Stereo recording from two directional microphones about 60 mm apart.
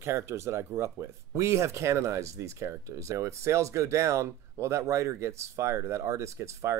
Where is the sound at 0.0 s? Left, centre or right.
Right.